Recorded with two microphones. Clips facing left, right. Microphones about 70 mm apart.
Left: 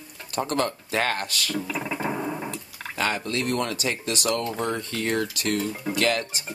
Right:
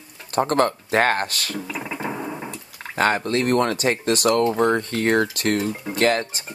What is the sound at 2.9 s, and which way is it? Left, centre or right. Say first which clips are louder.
Speech: right 6 dB; right.